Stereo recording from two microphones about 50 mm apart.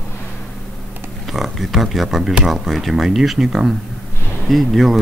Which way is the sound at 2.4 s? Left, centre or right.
Centre.